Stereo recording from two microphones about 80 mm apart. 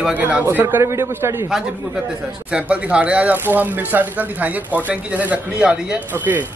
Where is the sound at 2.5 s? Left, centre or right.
Centre.